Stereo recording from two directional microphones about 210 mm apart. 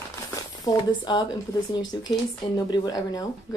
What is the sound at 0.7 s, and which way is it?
Speech, 20° left (ahead or behind).